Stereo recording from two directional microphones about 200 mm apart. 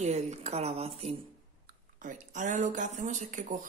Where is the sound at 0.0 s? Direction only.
35° right (ahead or behind).